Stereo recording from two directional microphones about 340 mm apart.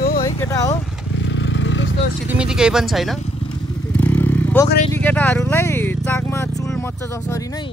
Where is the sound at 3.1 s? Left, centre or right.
Centre.